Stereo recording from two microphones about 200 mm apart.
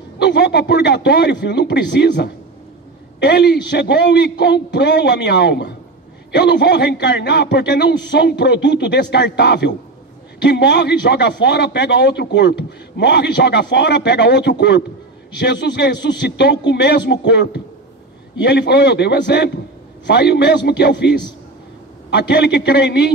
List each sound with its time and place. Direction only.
0.2 s a man's voice: 60° left (ahead or behind)